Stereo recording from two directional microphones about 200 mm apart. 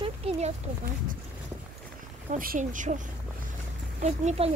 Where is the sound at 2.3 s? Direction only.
40° right (ahead or behind).